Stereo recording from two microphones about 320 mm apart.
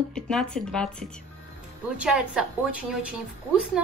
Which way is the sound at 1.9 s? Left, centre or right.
Centre.